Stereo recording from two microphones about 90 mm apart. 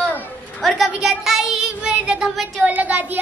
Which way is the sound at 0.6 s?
Centre (ahead or behind).